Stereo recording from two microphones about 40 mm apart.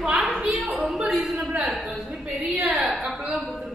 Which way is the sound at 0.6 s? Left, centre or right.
Right.